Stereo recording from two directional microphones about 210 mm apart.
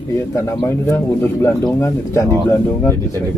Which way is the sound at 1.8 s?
15° left (ahead or behind).